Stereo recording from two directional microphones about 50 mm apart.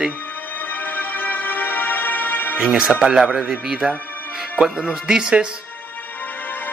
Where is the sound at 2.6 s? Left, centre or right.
Centre.